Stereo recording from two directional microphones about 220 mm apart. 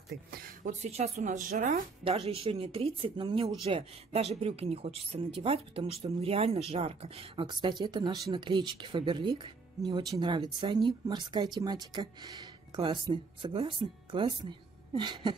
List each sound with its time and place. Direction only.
0.1 s speech: 45° right (ahead or behind)
0.7 s speech: 30° right (ahead or behind)